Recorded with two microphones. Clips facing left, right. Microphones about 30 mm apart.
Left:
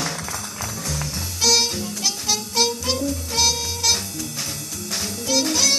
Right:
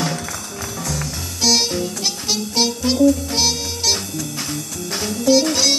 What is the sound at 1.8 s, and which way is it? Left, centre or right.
Music, right.